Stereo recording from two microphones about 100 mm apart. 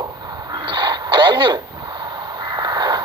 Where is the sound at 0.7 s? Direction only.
50° right (ahead or behind).